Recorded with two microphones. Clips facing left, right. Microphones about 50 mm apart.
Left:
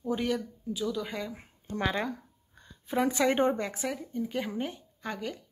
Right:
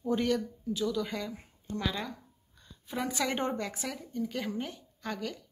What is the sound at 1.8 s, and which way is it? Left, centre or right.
A woman's voice, left.